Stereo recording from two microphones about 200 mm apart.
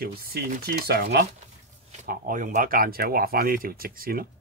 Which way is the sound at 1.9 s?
40° right (ahead or behind).